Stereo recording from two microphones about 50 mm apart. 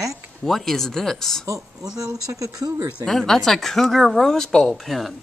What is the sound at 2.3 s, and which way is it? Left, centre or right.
Speech, right.